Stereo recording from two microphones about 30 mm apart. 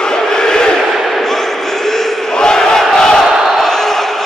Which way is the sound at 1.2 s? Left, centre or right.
Centre.